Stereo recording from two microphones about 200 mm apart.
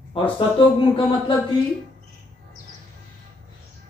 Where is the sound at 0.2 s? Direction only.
30° left (ahead or behind).